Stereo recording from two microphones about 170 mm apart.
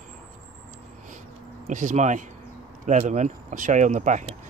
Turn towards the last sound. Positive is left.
turn(degrees=-45)  # may be behind; listen again after turning